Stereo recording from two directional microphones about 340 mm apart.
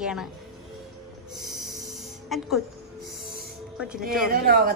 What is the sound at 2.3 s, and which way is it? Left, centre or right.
Speech, centre.